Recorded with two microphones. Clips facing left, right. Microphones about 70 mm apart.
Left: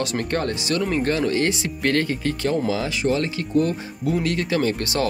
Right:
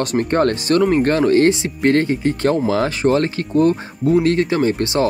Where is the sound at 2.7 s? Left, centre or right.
Right.